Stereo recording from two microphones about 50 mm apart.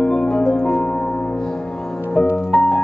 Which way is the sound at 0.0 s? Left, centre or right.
Centre.